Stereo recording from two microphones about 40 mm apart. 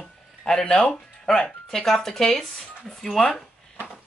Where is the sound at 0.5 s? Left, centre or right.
Centre.